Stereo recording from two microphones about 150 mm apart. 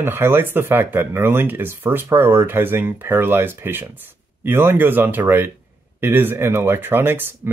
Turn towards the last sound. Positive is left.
turn(degrees=-15)  # may be behind; listen again after turning